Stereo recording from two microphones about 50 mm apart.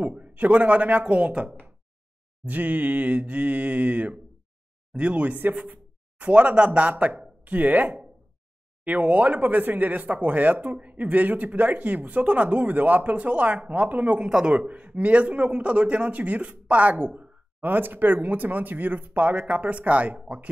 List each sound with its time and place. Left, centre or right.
0.0 s a man's voice: right
14.2 s a man's voice: centre
17.6 s speech: right